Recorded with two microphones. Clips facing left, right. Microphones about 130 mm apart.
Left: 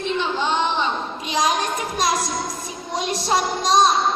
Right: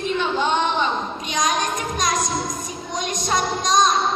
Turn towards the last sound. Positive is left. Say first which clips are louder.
# left 1 dB
turn(degrees=30)  # may be behind; listen again after turning